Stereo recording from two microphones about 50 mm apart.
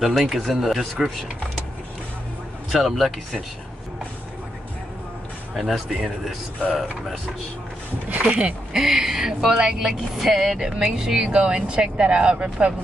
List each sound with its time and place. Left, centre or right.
0.0 s speech: centre
2.7 s speech: centre
5.6 s speech: centre
8.1 s speech: right
8.7 s speech: centre; by 12.7 s right